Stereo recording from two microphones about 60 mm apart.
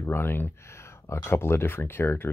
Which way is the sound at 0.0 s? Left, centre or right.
Left.